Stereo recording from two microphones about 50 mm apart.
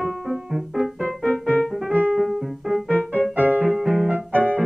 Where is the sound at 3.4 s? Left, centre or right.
Right.